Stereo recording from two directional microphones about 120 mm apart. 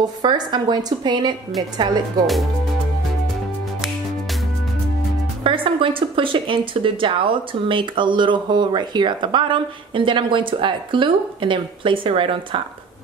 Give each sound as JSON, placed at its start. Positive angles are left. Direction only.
{"t": 0.0, "sound": "a woman's voice", "side_deg": -35}
{"t": 5.4, "sound": "a woman's voice", "side_deg": -45}